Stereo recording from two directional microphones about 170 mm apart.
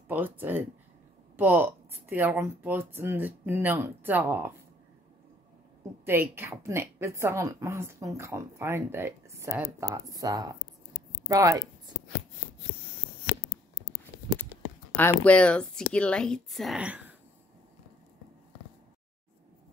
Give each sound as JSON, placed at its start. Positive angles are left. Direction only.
{"t": 0.1, "sound": "a woman's voice", "side_deg": -10}
{"t": 6.0, "sound": "a woman's voice", "side_deg": -10}
{"t": 15.0, "sound": "speech", "side_deg": 10}